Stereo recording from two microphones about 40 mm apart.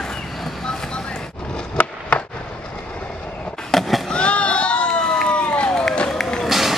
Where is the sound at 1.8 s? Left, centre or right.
Left.